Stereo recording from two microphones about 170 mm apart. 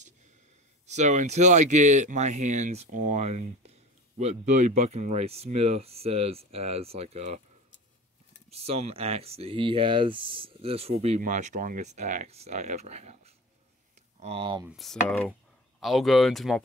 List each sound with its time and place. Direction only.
0.8 s speech: 45° right (ahead or behind)
8.5 s speech: 40° right (ahead or behind)
14.7 s speech: centre (ahead or behind)